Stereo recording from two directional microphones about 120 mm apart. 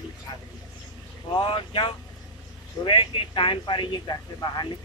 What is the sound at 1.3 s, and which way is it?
Speech, 45° left (ahead or behind).